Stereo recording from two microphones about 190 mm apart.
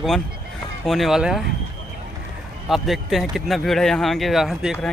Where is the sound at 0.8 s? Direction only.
Centre (ahead or behind).